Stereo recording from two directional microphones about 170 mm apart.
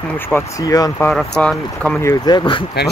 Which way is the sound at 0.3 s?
20° left (ahead or behind).